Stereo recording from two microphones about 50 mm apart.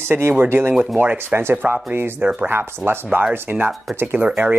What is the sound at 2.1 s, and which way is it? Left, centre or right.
Speech, right.